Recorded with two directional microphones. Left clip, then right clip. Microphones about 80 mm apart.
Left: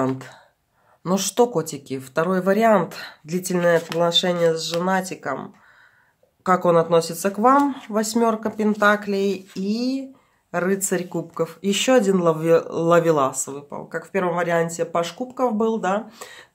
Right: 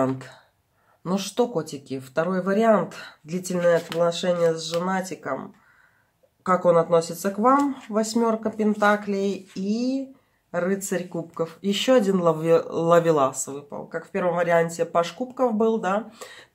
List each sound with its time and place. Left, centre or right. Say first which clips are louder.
0.0 s speech: left 1 dB; left
1.1 s speech: left 5 dB; left
4.1 s speech: left 3 dB; left